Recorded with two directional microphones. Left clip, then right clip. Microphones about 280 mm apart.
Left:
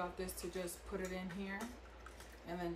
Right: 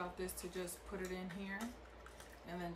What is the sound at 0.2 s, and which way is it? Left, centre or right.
Speech, centre.